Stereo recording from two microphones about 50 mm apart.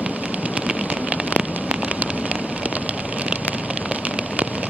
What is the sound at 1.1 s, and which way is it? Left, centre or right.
Rain on surface, right.